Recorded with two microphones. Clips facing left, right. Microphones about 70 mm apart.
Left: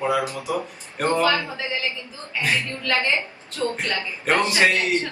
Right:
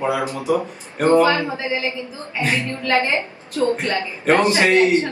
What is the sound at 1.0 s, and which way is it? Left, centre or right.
A woman's voice, right.